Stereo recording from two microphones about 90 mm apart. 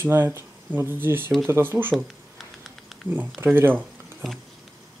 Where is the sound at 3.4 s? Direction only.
25° right (ahead or behind).